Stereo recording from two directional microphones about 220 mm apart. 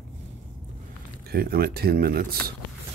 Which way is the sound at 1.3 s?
45° right (ahead or behind).